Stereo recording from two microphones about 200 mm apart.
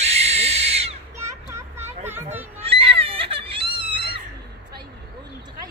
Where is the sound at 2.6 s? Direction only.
30° right (ahead or behind).